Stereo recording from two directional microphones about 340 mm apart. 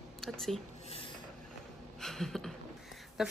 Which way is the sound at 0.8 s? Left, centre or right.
Centre.